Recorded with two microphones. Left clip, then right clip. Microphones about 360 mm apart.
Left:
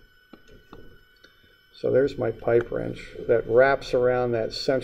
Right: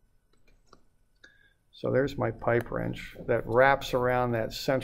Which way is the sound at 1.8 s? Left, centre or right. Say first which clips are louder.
Left 5 dB; right.